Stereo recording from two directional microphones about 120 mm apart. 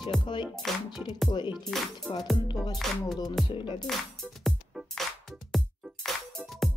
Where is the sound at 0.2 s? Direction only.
40° left (ahead or behind).